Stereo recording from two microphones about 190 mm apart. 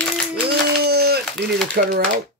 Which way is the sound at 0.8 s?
55° right (ahead or behind).